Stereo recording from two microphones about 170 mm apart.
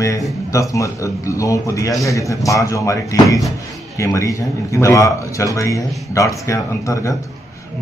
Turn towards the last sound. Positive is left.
turn(degrees=20)  # may be behind; listen again after turning